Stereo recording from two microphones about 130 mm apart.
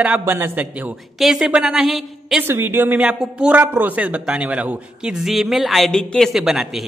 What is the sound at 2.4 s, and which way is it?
A man's voice, 20° right (ahead or behind).